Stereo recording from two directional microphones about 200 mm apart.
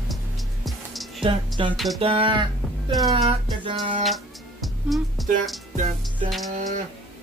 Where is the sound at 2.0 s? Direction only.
25° right (ahead or behind).